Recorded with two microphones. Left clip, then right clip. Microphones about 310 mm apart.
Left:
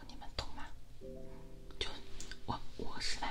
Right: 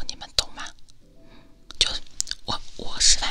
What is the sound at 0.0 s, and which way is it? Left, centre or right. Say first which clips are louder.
Whispering: right 19 dB; right.